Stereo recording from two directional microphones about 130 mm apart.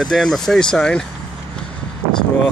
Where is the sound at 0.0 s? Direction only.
5° left (ahead or behind).